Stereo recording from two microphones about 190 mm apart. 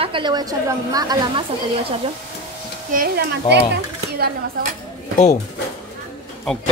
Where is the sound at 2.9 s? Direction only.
50° right (ahead or behind).